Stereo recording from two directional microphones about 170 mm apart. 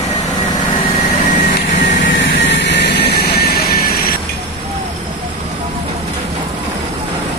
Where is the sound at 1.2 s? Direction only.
45° left (ahead or behind).